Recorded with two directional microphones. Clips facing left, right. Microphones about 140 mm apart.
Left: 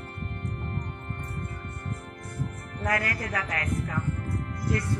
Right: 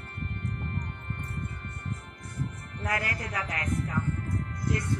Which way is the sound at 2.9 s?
25° right (ahead or behind).